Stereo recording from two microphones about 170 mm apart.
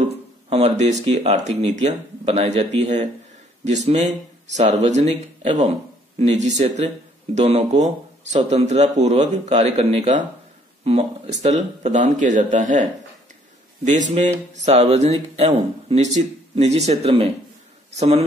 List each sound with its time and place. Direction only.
0.5 s speech: 40° right (ahead or behind)
13.8 s speech: 45° right (ahead or behind)